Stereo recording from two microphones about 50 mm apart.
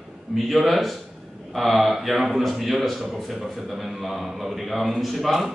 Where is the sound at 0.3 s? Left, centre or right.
Centre.